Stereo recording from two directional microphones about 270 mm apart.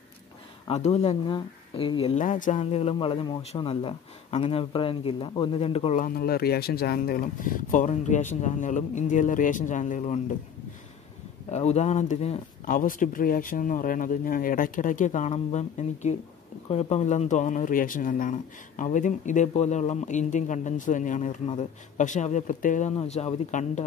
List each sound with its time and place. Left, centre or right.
0.7 s speech: left
11.5 s speech: left